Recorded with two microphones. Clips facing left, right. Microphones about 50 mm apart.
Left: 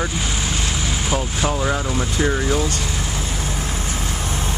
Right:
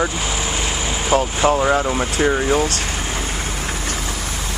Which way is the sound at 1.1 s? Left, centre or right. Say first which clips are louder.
Right 8 dB; right.